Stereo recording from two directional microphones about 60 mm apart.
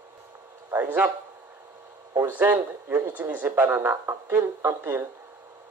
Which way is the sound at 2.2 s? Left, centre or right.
Right.